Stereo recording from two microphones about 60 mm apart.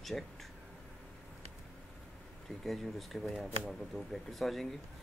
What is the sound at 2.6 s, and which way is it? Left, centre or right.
Speech, centre.